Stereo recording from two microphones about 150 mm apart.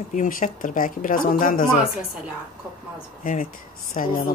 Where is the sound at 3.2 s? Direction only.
65° left (ahead or behind).